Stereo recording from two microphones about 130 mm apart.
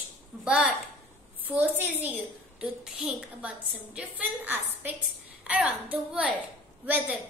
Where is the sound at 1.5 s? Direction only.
10° right (ahead or behind).